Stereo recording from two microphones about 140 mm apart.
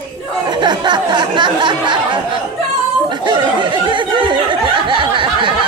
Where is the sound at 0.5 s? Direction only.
30° right (ahead or behind).